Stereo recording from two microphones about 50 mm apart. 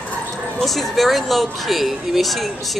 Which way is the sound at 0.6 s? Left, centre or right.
Centre.